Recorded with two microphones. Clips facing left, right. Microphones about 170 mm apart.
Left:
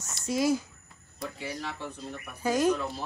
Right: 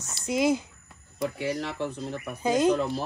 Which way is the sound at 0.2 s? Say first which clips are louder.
Right 2 dB; 20° right (ahead or behind).